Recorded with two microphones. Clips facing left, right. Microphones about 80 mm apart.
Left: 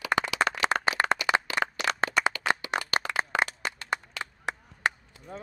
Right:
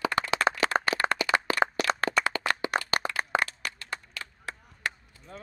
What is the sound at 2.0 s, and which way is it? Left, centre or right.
Clapping, left.